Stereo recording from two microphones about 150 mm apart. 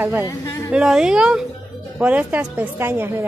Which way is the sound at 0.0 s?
15° right (ahead or behind).